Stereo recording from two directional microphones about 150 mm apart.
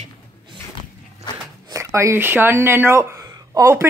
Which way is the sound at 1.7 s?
20° right (ahead or behind).